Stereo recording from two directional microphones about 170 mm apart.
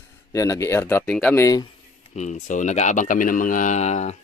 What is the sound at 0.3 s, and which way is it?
Speech, 20° left (ahead or behind).